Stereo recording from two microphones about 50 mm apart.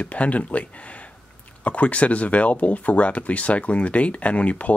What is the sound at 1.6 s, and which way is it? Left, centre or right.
Speech, left.